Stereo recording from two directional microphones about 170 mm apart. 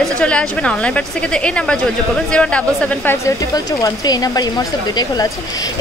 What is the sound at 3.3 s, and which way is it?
Speech, 20° left (ahead or behind).